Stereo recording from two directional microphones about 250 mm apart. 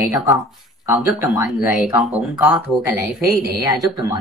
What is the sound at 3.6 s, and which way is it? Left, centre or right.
Speech, centre.